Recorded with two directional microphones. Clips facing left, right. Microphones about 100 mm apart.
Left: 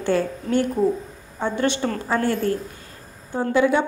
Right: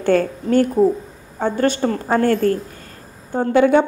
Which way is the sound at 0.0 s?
45° right (ahead or behind).